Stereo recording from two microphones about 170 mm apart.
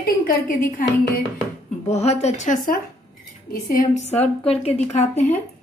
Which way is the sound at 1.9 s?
40° left (ahead or behind).